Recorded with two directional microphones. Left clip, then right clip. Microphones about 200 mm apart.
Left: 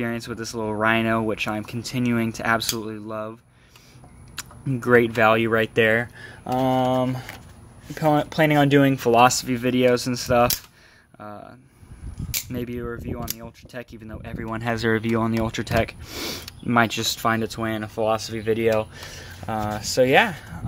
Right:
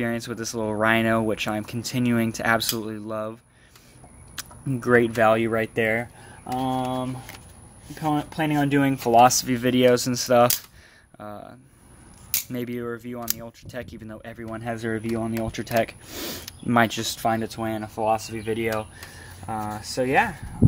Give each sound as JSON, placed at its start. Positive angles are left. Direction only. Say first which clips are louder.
{"t": 0.0, "sound": "speech", "louder": "right 1 dB", "side_deg": 0}
{"t": 4.4, "sound": "speech", "louder": "left 1 dB", "side_deg": 15}
{"t": 9.2, "sound": "speech", "louder": "right 1 dB", "side_deg": 10}
{"t": 9.5, "sound": "speech", "louder": "right 1 dB", "side_deg": 0}
{"t": 14.4, "sound": "speech", "louder": "left 6 dB", "side_deg": 30}
{"t": 15.7, "sound": "speech", "louder": "right 2 dB", "side_deg": 15}
{"t": 19.4, "sound": "speech", "louder": "left 3 dB", "side_deg": 50}